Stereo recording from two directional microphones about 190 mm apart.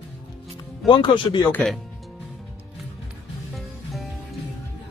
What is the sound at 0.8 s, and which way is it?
Speech, 25° left (ahead or behind).